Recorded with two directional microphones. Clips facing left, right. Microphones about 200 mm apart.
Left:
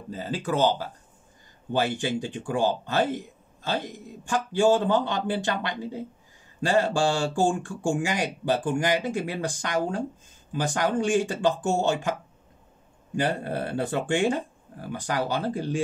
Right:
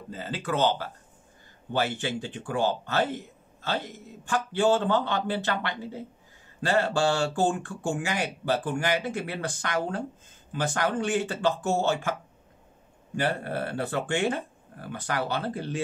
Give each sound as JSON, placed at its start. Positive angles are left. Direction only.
{"t": 0.1, "sound": "speech", "side_deg": 10}